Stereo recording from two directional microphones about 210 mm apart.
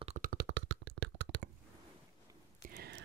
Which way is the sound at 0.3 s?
55° right (ahead or behind).